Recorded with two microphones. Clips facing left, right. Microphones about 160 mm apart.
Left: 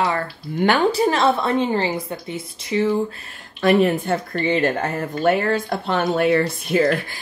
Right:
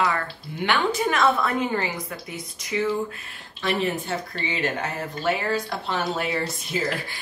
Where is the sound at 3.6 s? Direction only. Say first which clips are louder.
Left 9 dB; 55° left (ahead or behind).